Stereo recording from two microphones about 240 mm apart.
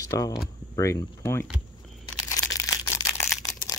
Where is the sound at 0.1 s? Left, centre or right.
Centre.